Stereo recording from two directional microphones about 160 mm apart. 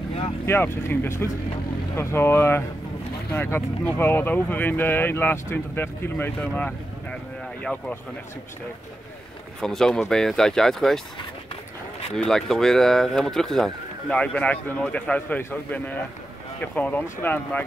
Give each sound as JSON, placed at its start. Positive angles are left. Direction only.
{"t": 0.5, "sound": "speech", "side_deg": 15}
{"t": 9.6, "sound": "speech", "side_deg": 5}
{"t": 12.3, "sound": "speech", "side_deg": 5}